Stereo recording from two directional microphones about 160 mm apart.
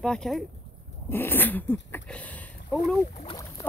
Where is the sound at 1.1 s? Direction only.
15° left (ahead or behind).